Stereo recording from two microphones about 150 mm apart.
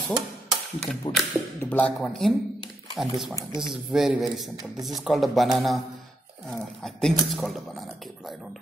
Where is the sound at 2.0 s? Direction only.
Centre (ahead or behind).